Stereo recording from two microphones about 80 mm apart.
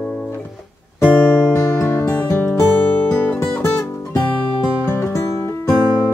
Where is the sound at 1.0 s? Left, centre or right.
Centre.